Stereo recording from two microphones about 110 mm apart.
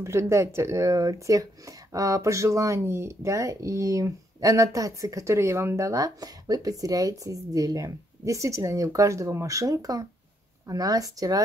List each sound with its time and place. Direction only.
0.0 s speech: 25° right (ahead or behind)